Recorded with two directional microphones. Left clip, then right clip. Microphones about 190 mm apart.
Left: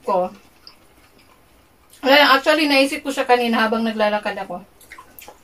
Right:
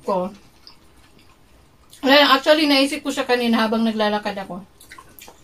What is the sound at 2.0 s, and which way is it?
A woman's voice, 5° right (ahead or behind).